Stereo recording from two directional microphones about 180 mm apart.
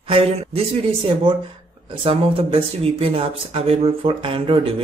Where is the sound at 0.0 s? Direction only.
30° right (ahead or behind).